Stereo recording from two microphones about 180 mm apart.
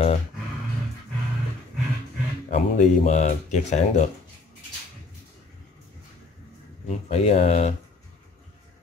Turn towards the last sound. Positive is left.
turn(degrees=35)  # may be behind; listen again after turning